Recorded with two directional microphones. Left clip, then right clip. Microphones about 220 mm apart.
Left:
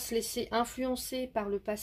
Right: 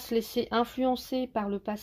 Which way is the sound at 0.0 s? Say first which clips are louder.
Right 4 dB; 30° right (ahead or behind).